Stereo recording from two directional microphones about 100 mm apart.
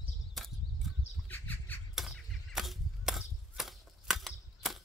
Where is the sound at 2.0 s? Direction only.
Centre (ahead or behind).